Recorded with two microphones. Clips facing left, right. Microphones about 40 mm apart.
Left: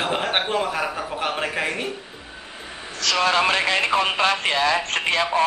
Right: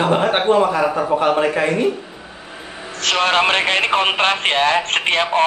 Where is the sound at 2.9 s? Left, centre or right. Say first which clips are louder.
Right 3 dB; right.